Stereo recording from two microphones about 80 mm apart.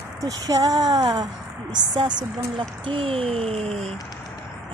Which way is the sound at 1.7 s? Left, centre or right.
Right.